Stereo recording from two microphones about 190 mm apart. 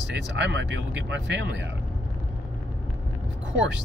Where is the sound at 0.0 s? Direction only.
70° right (ahead or behind).